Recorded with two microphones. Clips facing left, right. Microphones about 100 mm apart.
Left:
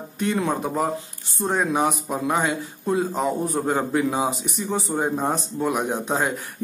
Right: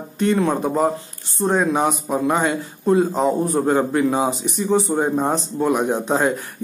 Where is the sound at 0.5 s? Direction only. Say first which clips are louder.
Right 4 dB; 10° right (ahead or behind).